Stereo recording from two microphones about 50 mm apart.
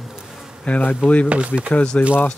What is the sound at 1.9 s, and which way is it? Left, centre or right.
Speech, left.